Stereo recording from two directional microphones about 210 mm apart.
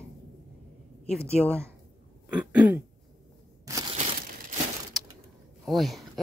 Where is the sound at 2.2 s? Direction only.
5° right (ahead or behind).